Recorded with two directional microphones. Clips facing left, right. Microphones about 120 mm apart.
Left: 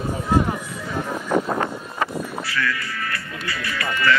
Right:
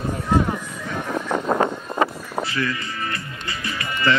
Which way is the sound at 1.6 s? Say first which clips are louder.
Right 5 dB; 25° right (ahead or behind).